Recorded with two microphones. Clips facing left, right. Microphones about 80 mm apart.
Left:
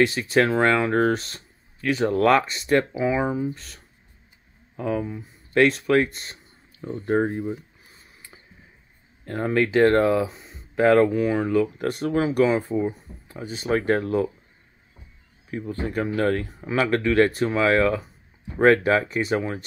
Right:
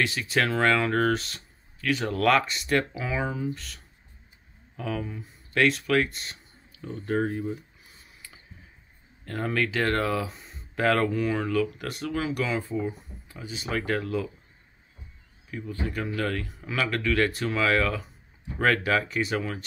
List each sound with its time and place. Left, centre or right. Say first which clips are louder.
0.0 s speech: left 6 dB; left
9.2 s speech: left 5 dB; left
11.6 s speech: left 6 dB; left
15.5 s speech: left 5 dB; left